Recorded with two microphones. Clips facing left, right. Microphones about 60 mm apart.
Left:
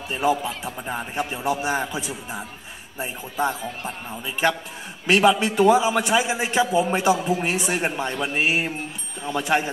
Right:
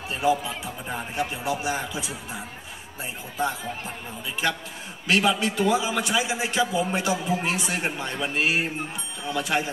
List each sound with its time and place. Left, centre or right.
0.1 s a man's voice: left